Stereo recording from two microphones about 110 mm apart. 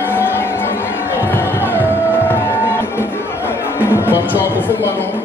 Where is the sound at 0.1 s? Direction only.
20° left (ahead or behind).